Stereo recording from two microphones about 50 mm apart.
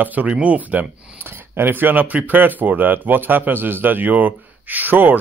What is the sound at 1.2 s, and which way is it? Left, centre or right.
Speech, right.